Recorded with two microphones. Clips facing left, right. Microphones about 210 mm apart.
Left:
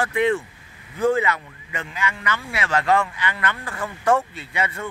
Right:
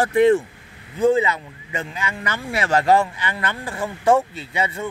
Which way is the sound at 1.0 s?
20° right (ahead or behind).